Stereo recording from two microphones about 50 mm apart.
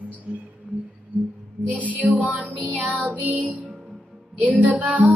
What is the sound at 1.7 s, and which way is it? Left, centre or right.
Music, right.